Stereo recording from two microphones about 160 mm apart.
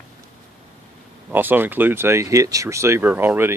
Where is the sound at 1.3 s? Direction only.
10° right (ahead or behind).